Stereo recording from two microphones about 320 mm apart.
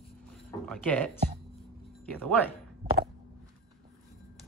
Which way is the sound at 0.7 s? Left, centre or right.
Centre.